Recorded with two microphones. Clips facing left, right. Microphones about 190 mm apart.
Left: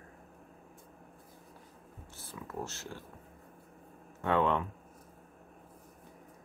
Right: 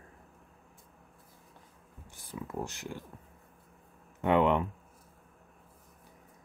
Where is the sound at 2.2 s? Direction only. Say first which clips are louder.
Right 3 dB; 15° right (ahead or behind).